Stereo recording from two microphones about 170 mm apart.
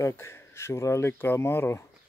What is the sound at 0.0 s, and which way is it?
Speech, 15° left (ahead or behind).